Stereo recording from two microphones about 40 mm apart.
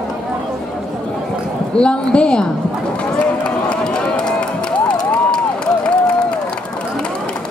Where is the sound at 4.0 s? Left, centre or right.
Left.